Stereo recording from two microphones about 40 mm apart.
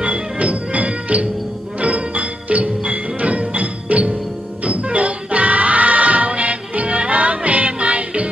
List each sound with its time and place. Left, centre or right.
0.0 s music: right